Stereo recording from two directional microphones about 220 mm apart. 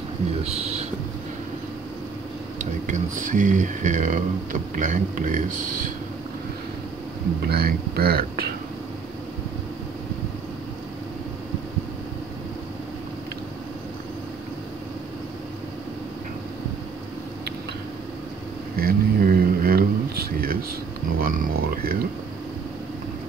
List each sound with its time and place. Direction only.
0.4 s speech: 30° right (ahead or behind)
2.6 s speech: 35° right (ahead or behind)
7.4 s speech: 45° right (ahead or behind)
18.8 s a sound: 45° right (ahead or behind)